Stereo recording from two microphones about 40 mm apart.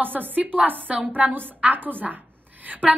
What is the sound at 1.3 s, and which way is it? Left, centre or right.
Speech, right.